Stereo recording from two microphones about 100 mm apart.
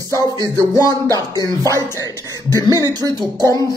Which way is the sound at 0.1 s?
40° right (ahead or behind).